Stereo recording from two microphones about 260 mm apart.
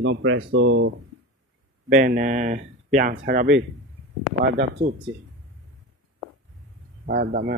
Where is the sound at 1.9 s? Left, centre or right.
Right.